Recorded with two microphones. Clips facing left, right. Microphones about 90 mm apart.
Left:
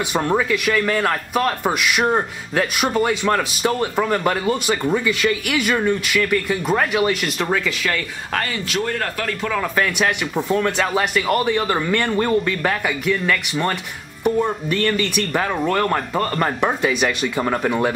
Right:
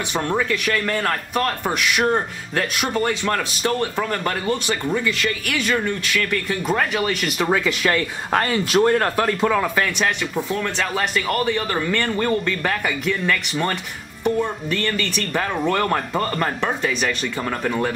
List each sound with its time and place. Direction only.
0.1 s speech: 10° left (ahead or behind); by 7.6 s 5° right (ahead or behind)
7.6 s a man's voice: 20° right (ahead or behind)
9.5 s a man's voice: 10° right (ahead or behind)
10.6 s speech: 10° left (ahead or behind)
16.6 s speech: 15° left (ahead or behind)